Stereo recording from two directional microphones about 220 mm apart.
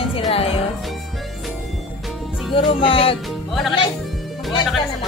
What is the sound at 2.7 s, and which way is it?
Speech, 25° left (ahead or behind).